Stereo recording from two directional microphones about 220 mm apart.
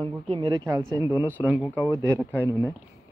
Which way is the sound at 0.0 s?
20° right (ahead or behind).